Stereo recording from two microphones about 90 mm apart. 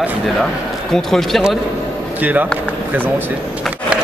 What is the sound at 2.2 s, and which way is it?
Speech, 20° right (ahead or behind).